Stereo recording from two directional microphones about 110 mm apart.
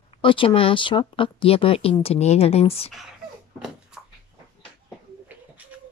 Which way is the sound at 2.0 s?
70° left (ahead or behind).